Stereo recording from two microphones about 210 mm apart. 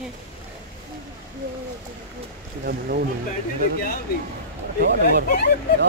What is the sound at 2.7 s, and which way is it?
Speech, 50° right (ahead or behind).